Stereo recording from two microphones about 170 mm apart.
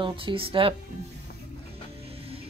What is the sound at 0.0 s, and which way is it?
Speech, 30° right (ahead or behind).